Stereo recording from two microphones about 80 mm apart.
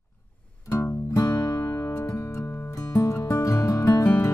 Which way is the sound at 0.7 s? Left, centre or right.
Left.